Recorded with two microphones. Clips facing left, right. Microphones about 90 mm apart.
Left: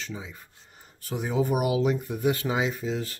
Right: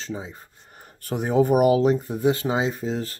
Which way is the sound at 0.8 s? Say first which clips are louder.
Right 5 dB; 50° right (ahead or behind).